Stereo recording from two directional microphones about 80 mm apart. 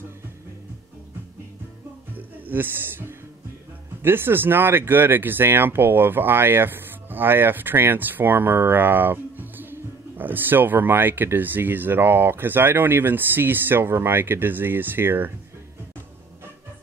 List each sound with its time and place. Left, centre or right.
2.1 s a man's voice: right